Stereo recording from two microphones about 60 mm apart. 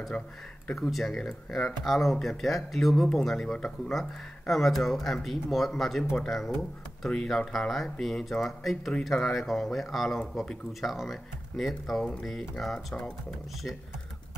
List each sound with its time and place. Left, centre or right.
0.1 s speech: left
0.7 s speech: centre